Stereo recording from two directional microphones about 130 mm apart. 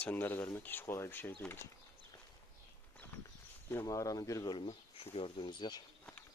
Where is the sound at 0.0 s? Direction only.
15° left (ahead or behind).